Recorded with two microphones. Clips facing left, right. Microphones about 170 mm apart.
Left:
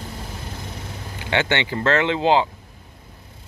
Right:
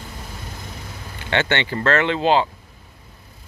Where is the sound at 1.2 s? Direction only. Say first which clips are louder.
Even; 15° left (ahead or behind).